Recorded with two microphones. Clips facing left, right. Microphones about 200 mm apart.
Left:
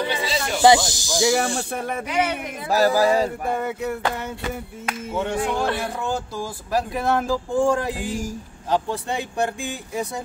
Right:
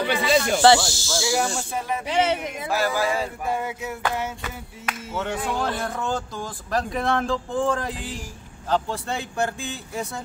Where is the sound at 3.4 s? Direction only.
55° left (ahead or behind).